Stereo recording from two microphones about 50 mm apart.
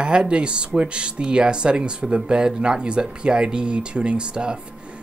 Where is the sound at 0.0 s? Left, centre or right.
Centre.